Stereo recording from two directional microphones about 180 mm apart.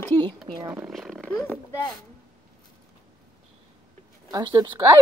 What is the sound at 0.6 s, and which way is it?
Speech, 20° right (ahead or behind).